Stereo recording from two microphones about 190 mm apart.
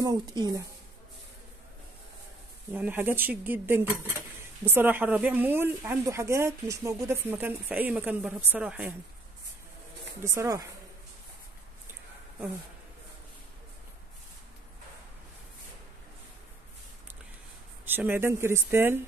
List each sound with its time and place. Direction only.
0.0 s a woman's voice: 20° right (ahead or behind)
2.7 s a woman's voice: 10° right (ahead or behind)
10.2 s a woman's voice: 15° right (ahead or behind)
17.8 s a woman's voice: 10° right (ahead or behind)